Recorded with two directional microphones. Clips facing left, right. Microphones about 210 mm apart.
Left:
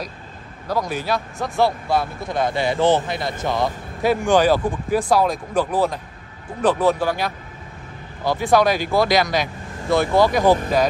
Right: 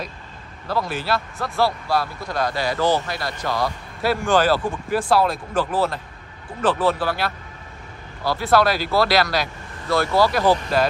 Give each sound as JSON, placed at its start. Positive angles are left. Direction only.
{"t": 0.7, "sound": "a man's voice", "side_deg": 15}